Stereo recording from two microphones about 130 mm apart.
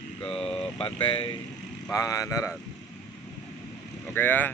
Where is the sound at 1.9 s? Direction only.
25° left (ahead or behind).